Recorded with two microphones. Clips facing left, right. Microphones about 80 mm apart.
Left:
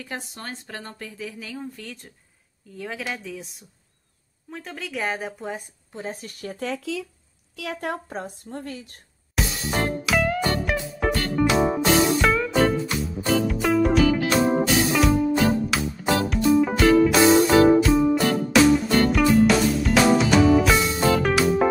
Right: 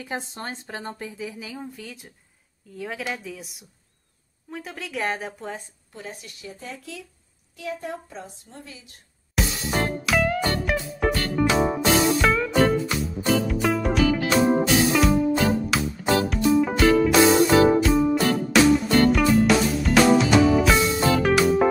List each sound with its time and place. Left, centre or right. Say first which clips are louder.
0.0 s a woman's voice: right 3 dB; right; by 5.6 s centre
5.9 s a woman's voice: left 5 dB; left
6.6 s a woman's voice: left 11 dB; left
9.3 s music: right 1 dB; centre